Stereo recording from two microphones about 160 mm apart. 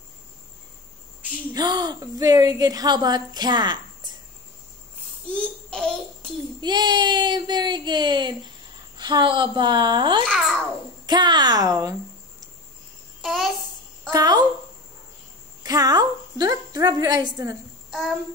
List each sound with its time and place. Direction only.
1.5 s a woman's voice: 25° right (ahead or behind)
5.3 s babbling: 5° left (ahead or behind)
6.6 s a woman's voice: 25° right (ahead or behind)
10.2 s a child's voice: centre (ahead or behind)
11.1 s a woman's voice: 25° right (ahead or behind)
13.2 s babbling: centre (ahead or behind)
14.1 s a woman's voice: 25° right (ahead or behind)
15.6 s a woman's voice: 25° right (ahead or behind)